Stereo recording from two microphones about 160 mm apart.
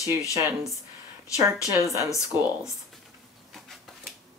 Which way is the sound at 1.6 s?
20° right (ahead or behind).